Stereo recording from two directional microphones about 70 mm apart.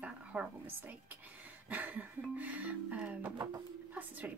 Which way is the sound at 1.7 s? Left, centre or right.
Right.